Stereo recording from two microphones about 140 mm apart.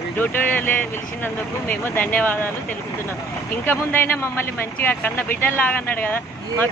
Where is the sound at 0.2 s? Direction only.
15° left (ahead or behind).